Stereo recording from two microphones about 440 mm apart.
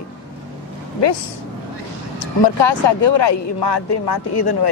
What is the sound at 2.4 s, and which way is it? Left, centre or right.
A man's voice, left.